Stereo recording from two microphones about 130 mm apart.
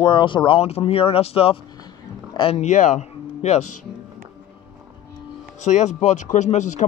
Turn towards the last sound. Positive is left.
turn(degrees=65)  # may be behind; listen again after turning